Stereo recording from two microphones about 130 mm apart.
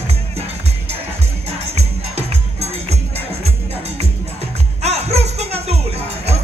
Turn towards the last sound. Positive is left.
turn(degrees=-55)  # may be behind; listen again after turning